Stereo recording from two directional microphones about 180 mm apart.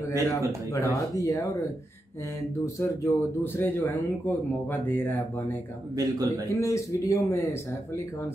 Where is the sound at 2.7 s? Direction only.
15° left (ahead or behind).